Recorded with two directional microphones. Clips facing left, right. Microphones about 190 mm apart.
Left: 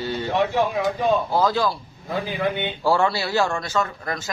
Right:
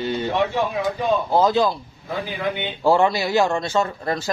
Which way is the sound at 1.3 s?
20° right (ahead or behind).